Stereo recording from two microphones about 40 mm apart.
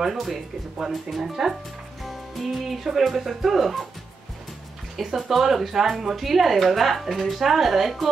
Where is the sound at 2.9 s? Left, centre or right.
Centre.